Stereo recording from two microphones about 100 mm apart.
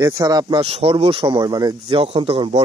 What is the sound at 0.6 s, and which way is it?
Speech, 90° right.